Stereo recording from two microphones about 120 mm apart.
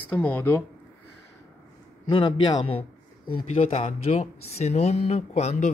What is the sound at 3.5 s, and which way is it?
Speech, 65° left (ahead or behind).